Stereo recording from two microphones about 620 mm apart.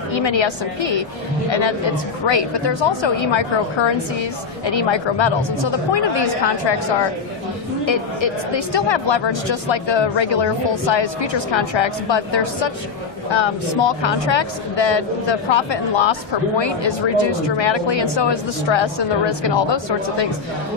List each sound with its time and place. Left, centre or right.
1.5 s a woman's voice: left